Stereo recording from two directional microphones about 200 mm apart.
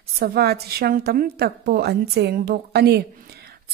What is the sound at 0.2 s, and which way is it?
Speech, 50° right (ahead or behind).